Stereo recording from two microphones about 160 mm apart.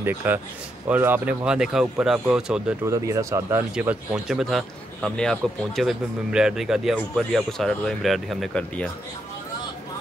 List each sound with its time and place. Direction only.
0.0 s speech: 10° right (ahead or behind)
2.9 s speech: 20° right (ahead or behind)
3.7 s a man's voice: 10° right (ahead or behind)